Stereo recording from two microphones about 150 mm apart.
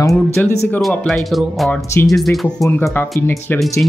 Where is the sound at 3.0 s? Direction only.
15° left (ahead or behind).